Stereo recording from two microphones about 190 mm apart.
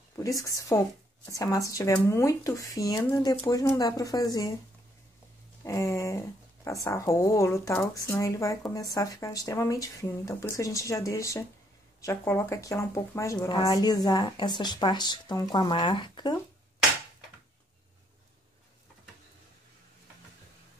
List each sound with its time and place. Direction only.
0.1 s speech: 15° left (ahead or behind)
5.6 s speech: 15° left (ahead or behind)